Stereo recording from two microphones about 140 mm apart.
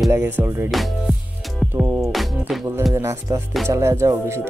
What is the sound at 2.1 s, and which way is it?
Speech, centre (ahead or behind).